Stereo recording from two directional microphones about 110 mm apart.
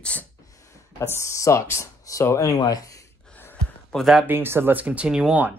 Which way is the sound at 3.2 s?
15° left (ahead or behind).